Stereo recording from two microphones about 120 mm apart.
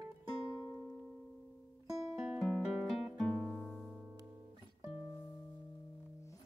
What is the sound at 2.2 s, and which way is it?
Music, centre (ahead or behind).